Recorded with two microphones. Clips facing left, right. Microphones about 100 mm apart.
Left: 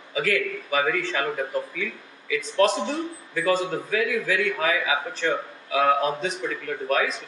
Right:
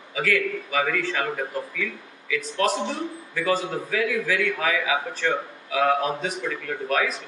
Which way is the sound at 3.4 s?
40° left (ahead or behind).